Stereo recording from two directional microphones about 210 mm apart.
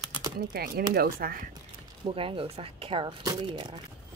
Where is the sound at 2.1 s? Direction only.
25° right (ahead or behind).